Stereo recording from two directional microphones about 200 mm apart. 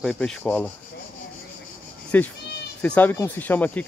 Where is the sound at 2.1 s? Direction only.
10° left (ahead or behind).